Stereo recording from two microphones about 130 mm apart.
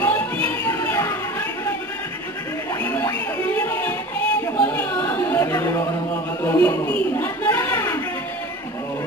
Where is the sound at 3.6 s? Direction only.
15° left (ahead or behind).